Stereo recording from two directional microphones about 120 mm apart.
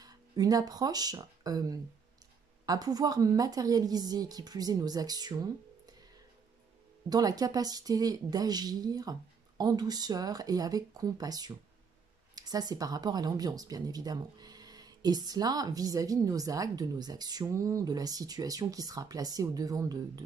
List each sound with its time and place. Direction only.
0.0 s speech: 30° right (ahead or behind)
7.1 s speech: 30° right (ahead or behind)